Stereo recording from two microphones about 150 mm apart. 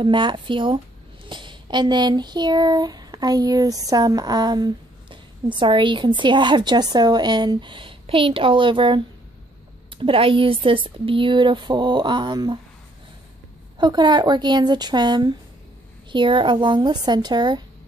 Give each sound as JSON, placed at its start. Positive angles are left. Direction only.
{"t": 0.0, "sound": "speech", "side_deg": -30}
{"t": 13.7, "sound": "speech", "side_deg": -30}